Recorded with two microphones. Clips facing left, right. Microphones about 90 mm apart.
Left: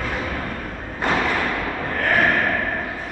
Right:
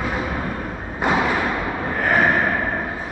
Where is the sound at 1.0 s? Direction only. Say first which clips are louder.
Right 2 dB; 10° right (ahead or behind).